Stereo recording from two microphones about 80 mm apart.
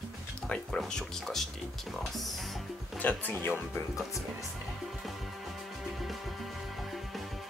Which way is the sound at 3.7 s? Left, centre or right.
Left.